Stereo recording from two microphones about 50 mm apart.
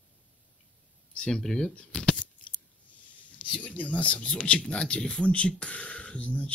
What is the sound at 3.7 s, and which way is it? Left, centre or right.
Speech, left.